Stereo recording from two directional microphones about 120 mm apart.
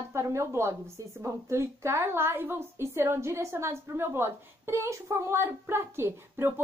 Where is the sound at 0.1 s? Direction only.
25° right (ahead or behind).